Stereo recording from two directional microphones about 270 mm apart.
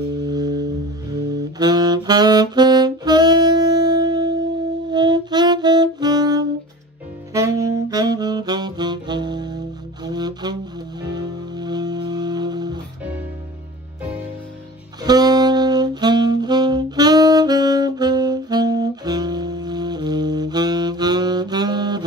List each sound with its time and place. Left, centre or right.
0.2 s music: centre
1.1 s saxophone: centre
10.0 s music: centre
15.0 s saxophone: centre